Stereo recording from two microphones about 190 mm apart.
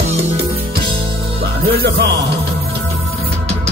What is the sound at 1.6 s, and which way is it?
Music, 55° right (ahead or behind).